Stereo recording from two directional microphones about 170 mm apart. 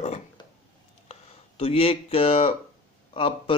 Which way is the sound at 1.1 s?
35° left (ahead or behind).